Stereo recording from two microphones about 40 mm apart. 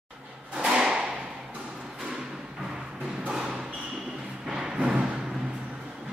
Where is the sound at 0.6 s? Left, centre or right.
Right.